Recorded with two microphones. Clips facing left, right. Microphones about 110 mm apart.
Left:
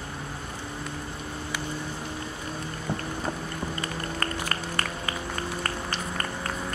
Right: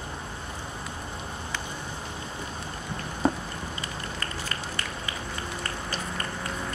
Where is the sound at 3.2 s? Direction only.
30° right (ahead or behind).